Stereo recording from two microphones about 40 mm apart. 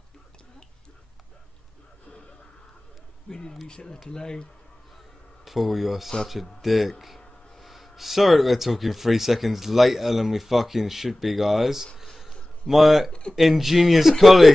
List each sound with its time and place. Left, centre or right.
3.3 s speech: centre
5.4 s speech: centre